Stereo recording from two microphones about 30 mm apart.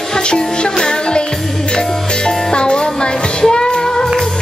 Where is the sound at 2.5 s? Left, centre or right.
Left.